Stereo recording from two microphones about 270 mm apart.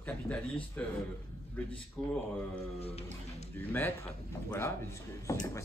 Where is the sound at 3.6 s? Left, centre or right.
Centre.